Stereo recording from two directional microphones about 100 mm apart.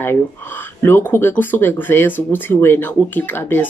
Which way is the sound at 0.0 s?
20° left (ahead or behind).